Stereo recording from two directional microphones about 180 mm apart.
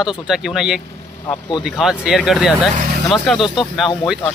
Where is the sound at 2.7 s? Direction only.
50° right (ahead or behind).